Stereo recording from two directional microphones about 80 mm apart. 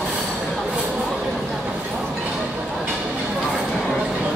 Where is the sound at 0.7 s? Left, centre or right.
Centre.